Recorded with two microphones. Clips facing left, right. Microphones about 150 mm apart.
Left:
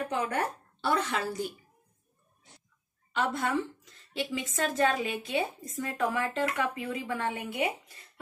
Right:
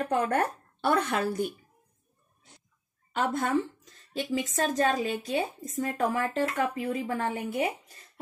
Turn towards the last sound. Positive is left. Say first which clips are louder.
# right 2 dB
turn(degrees=-40)  # may be behind; listen again after turning